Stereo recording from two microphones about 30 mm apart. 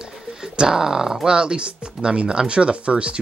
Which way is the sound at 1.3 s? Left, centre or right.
Right.